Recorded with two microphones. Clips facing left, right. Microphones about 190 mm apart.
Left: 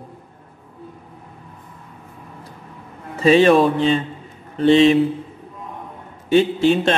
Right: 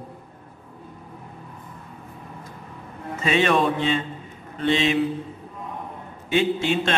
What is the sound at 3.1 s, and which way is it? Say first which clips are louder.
Mantra: left 8 dB; 35° left (ahead or behind).